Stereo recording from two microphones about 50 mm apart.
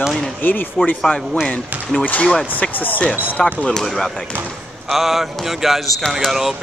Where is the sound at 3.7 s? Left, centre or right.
Centre.